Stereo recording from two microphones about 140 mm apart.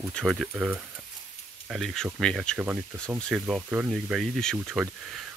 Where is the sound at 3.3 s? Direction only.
5° right (ahead or behind).